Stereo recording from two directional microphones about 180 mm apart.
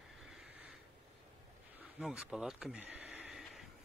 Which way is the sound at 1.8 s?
5° right (ahead or behind).